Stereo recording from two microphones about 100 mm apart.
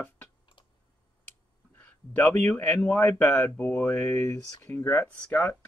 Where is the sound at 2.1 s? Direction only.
15° left (ahead or behind).